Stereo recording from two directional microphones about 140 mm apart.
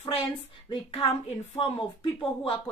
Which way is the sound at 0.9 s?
40° left (ahead or behind).